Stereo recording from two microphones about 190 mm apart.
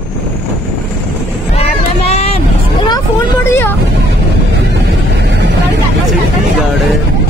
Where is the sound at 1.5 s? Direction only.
35° left (ahead or behind).